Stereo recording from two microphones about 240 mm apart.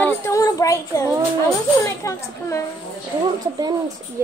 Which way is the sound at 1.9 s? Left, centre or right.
Centre.